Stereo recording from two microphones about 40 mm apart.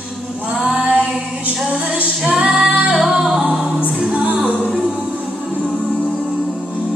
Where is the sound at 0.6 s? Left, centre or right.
Right.